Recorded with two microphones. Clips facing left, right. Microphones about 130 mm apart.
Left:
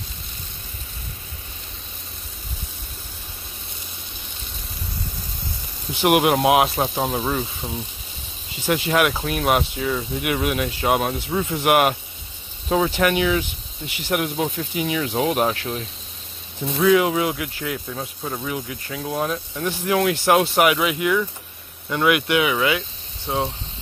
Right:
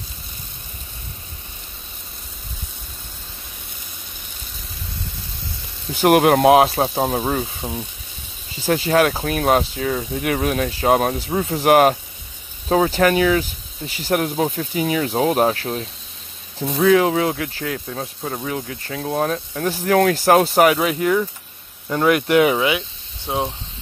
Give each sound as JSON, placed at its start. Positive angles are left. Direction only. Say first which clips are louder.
{"t": 5.9, "sound": "speech", "louder": "right 4 dB", "side_deg": -40}
{"t": 8.5, "sound": "speech", "louder": "right 3 dB", "side_deg": -35}
{"t": 22.6, "sound": "speech", "louder": "right 1 dB", "side_deg": -15}